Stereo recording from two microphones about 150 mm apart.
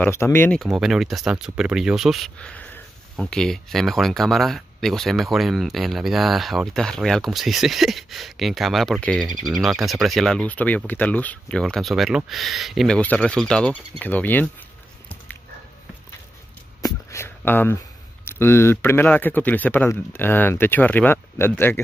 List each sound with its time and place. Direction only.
0.0 s speech: 15° left (ahead or behind)
0.6 s speech: 5° right (ahead or behind)
16.8 s a sound: 20° left (ahead or behind)
18.2 s speech: 15° left (ahead or behind)